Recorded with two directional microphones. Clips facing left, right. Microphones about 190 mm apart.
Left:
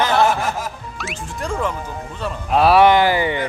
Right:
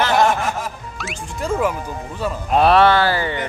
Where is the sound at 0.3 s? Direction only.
Centre (ahead or behind).